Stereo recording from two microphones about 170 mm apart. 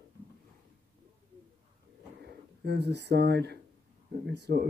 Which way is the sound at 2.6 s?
85° right.